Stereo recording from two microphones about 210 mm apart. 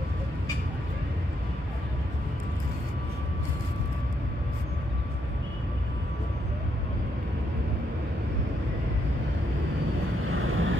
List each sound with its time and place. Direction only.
10.3 s vehicle: 75° right (ahead or behind)